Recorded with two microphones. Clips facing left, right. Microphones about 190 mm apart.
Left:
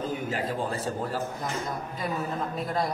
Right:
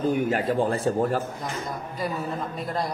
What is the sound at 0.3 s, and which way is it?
Speech, 50° right (ahead or behind).